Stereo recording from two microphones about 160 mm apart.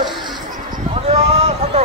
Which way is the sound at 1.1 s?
40° right (ahead or behind).